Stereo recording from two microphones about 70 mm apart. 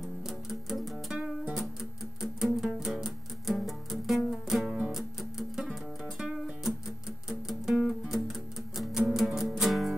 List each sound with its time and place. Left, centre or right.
0.0 s music: centre
1.1 s music: centre
2.2 s music: centre
4.7 s music: centre